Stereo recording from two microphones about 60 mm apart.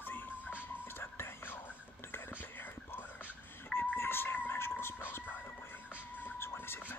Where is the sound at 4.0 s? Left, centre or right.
Left.